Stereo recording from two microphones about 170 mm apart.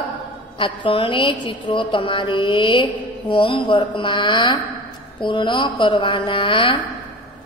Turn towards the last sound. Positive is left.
turn(degrees=30)  # may be behind; listen again after turning